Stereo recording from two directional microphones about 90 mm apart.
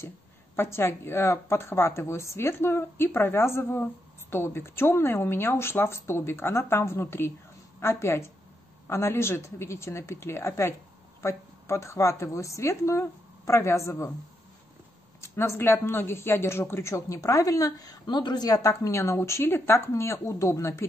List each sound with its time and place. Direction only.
0.6 s a woman's voice: 30° left (ahead or behind)
15.1 s speech: 30° left (ahead or behind)
18.0 s a woman's voice: 55° left (ahead or behind); by 20.8 s 35° left (ahead or behind)